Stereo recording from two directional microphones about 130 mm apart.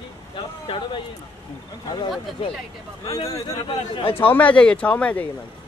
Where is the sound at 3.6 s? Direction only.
40° left (ahead or behind).